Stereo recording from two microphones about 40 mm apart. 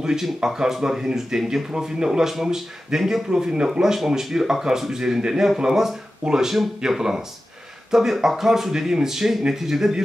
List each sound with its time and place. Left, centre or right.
0.0 s speech: centre